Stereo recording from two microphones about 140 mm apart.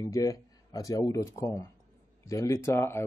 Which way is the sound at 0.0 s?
25° left (ahead or behind).